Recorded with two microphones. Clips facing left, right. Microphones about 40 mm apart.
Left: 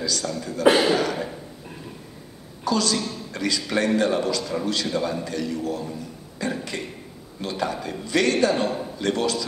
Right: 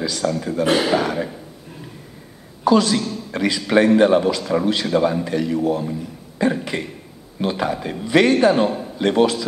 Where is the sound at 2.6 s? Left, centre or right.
Right.